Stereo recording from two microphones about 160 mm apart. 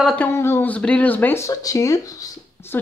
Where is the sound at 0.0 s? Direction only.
10° left (ahead or behind).